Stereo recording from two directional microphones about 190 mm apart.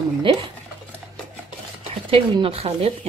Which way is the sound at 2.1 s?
30° right (ahead or behind).